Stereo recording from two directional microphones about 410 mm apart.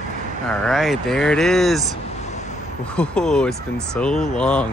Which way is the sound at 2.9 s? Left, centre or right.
Centre.